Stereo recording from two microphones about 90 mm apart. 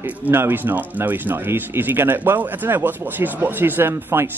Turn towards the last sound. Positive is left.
turn(degrees=-25)  # may be behind; listen again after turning